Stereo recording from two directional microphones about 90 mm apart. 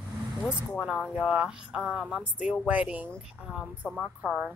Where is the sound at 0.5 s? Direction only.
10° right (ahead or behind).